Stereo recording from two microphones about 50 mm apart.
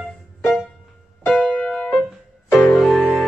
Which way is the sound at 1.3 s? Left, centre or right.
Centre.